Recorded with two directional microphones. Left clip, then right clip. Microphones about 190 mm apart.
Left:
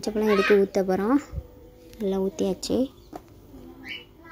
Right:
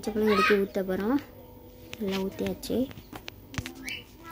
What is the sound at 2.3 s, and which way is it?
Speech, 30° left (ahead or behind).